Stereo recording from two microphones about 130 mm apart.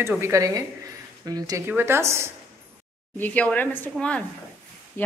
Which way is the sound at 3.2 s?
10° left (ahead or behind).